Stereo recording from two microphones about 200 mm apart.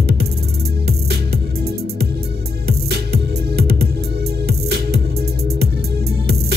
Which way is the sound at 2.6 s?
50° right (ahead or behind).